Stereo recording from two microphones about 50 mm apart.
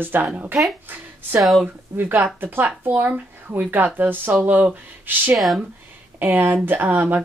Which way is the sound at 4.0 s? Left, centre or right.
Right.